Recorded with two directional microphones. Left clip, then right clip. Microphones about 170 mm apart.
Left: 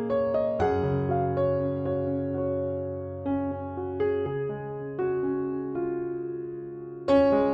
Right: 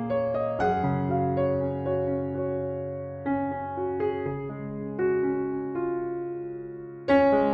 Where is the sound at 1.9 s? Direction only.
Centre (ahead or behind).